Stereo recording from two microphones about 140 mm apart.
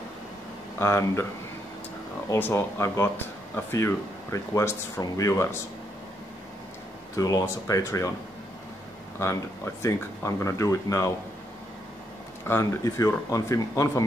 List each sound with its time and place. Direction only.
0.7 s speech: 20° left (ahead or behind)
2.2 s speech: 15° left (ahead or behind)
7.2 s speech: 25° left (ahead or behind)
9.2 s speech: 20° left (ahead or behind)
12.4 s speech: 20° left (ahead or behind)